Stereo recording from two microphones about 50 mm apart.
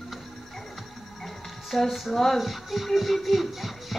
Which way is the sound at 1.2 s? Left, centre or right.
Centre.